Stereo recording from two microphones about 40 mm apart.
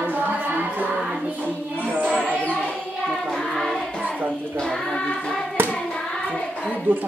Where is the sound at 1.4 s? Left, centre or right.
Right.